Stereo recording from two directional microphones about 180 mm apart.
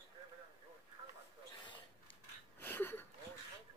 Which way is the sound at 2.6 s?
10° left (ahead or behind).